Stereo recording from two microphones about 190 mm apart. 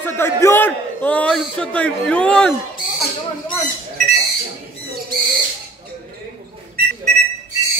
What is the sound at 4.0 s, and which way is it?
Owl, 40° right (ahead or behind).